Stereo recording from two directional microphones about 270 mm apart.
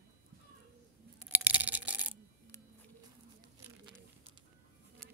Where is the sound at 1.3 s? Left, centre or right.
Centre.